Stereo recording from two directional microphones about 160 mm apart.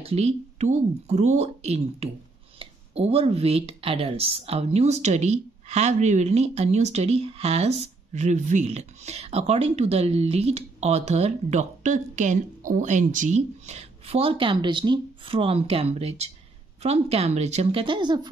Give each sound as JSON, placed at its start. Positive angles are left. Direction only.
{"t": 0.0, "sound": "speech", "side_deg": -40}